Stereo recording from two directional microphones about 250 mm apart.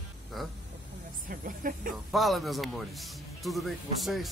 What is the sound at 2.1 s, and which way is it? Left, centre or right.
Speech, centre.